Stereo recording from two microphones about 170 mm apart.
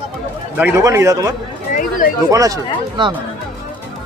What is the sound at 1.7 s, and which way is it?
Speech, 50° left (ahead or behind).